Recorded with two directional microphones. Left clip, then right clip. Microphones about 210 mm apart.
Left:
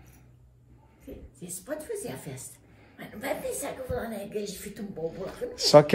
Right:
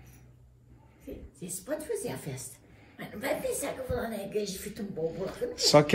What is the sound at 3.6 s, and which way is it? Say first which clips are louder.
Speech: even; 15° left (ahead or behind).